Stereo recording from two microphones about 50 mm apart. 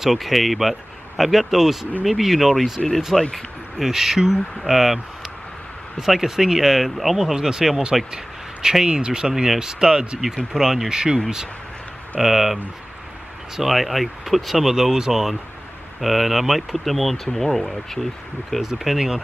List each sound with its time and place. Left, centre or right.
0.0 s speech: centre
3.7 s speech: centre
12.2 s speech: centre
13.6 s speech: centre
18.6 s speech: centre